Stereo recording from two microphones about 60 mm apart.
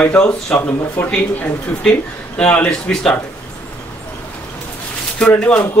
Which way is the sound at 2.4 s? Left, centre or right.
Centre.